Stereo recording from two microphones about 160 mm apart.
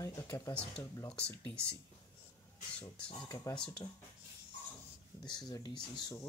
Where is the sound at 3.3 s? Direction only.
25° left (ahead or behind).